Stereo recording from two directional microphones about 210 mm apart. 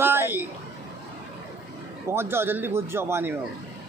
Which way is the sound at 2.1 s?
10° right (ahead or behind).